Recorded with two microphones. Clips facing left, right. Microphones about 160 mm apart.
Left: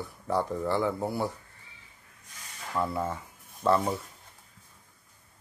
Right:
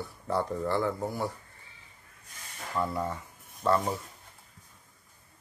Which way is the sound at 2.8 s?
5° left (ahead or behind).